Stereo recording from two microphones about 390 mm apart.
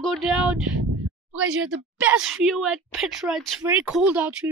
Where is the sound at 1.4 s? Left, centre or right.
Right.